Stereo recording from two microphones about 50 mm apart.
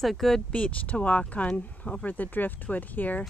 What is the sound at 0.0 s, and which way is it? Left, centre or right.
Speech, centre.